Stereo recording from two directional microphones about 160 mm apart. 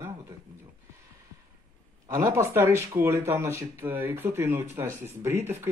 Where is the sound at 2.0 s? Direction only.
15° right (ahead or behind).